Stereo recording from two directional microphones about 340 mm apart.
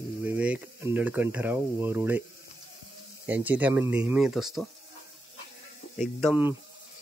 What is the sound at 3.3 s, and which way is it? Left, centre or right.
Speech, centre.